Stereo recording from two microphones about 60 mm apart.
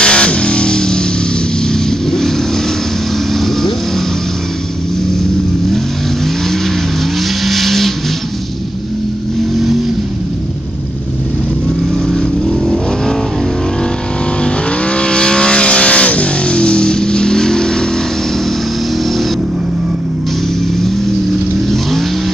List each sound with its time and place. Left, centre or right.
0.0 s music: centre
1.7 s vehicle: centre
7.4 s vehicle: centre
12.1 s vehicle: centre
14.4 s vehicle: centre